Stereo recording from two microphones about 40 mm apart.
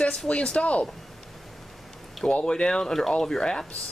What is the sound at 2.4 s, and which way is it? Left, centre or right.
Speech, centre.